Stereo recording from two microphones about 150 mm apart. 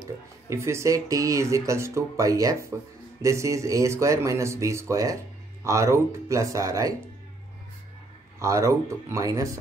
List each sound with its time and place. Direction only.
0.5 s speech: 20° right (ahead or behind)
8.4 s speech: 20° right (ahead or behind)